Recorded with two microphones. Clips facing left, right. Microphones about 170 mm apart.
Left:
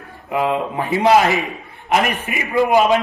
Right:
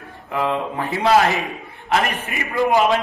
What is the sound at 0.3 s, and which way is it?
A man's voice, 15° left (ahead or behind).